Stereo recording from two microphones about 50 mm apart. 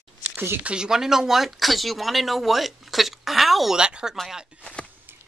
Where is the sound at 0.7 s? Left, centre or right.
Centre.